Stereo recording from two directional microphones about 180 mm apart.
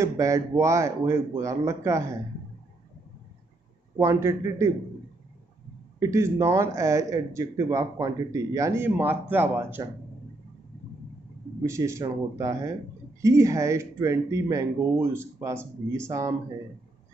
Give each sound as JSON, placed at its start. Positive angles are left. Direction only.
{"t": 0.0, "sound": "speech", "side_deg": -15}
{"t": 3.9, "sound": "speech", "side_deg": -15}
{"t": 5.9, "sound": "speech", "side_deg": -15}
{"t": 11.6, "sound": "speech", "side_deg": -15}